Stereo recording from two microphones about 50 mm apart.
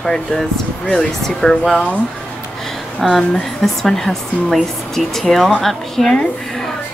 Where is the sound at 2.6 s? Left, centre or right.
Centre.